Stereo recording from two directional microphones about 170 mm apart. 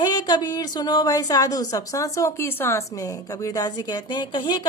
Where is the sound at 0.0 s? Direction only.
25° left (ahead or behind).